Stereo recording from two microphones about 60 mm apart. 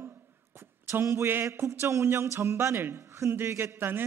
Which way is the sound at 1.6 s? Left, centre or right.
Right.